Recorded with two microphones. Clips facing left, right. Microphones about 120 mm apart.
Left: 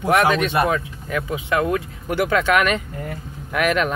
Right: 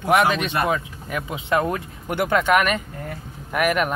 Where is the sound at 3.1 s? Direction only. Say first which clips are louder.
Left 2 dB; 10° right (ahead or behind).